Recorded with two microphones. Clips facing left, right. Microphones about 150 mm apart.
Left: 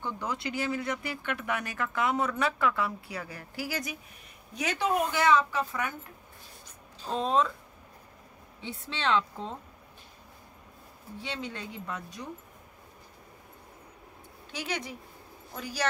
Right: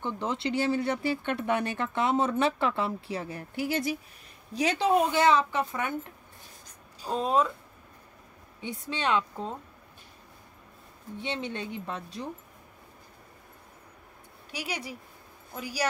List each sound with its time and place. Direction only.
0.0 s speech: 25° right (ahead or behind)
7.0 s speech: 10° right (ahead or behind)
8.5 s speech: 15° right (ahead or behind)
11.1 s speech: 25° right (ahead or behind)
14.5 s speech: 10° right (ahead or behind)